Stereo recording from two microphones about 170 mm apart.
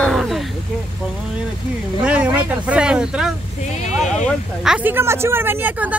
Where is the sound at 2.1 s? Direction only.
10° right (ahead or behind).